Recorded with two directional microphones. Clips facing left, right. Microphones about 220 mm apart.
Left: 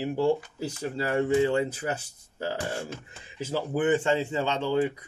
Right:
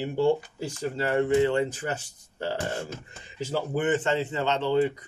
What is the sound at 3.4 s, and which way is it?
A man's voice, 10° left (ahead or behind).